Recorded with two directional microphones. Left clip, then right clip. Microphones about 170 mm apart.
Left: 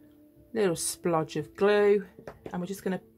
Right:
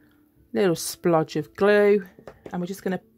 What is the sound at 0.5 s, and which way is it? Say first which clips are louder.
Speech: right 5 dB; 45° right (ahead or behind).